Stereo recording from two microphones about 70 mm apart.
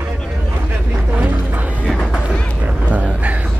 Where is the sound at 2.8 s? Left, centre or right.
Centre.